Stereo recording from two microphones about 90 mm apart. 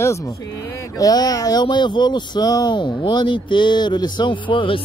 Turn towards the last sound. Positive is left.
turn(degrees=70)  # may be behind; listen again after turning